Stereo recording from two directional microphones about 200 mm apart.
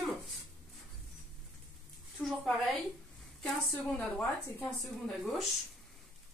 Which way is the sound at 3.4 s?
5° left (ahead or behind).